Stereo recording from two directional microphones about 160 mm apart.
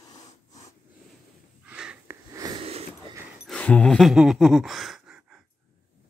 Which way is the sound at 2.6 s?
40° right (ahead or behind).